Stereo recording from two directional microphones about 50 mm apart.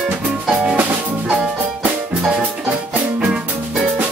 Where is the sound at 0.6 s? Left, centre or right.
Right.